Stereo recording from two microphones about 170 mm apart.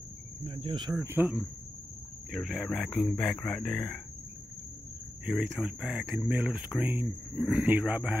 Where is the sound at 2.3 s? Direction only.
Centre (ahead or behind).